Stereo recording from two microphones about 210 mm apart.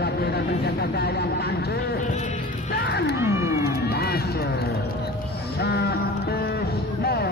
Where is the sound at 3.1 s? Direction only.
15° right (ahead or behind).